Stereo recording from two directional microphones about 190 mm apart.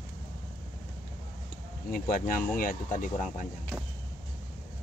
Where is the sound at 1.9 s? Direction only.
45° left (ahead or behind).